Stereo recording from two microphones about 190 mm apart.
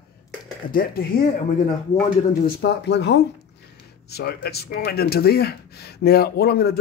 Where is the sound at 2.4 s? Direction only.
60° left (ahead or behind).